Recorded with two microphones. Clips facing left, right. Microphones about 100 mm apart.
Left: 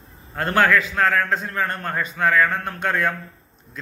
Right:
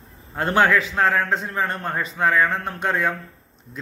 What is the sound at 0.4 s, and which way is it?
A man's voice, 20° right (ahead or behind).